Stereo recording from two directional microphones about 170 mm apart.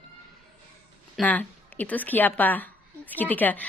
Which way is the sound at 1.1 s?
10° left (ahead or behind).